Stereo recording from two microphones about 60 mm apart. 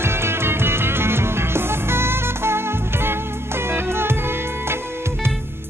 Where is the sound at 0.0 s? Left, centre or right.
Right.